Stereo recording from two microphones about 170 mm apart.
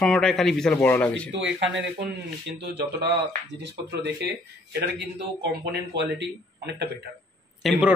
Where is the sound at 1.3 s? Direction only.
90° right.